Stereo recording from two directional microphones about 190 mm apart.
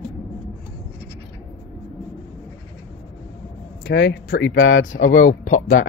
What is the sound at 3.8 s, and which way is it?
Speech, 65° left (ahead or behind).